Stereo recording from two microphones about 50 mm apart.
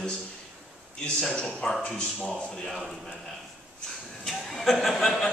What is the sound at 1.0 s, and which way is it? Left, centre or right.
A man's voice, centre.